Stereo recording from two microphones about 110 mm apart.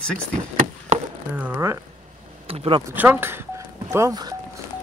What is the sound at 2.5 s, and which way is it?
Speech, 55° right (ahead or behind).